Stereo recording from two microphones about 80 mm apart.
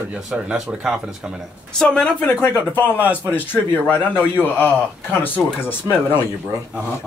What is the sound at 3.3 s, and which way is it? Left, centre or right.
A man's voice, left.